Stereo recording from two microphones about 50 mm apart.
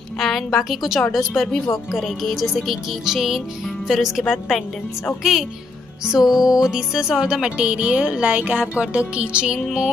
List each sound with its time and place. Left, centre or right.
0.2 s music: centre
6.0 s music: centre